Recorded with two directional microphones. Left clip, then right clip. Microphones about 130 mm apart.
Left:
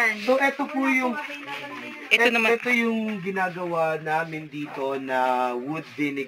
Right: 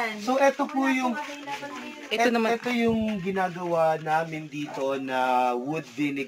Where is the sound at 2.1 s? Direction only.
70° right (ahead or behind).